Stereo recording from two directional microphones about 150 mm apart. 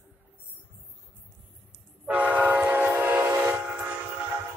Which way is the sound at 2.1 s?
10° right (ahead or behind).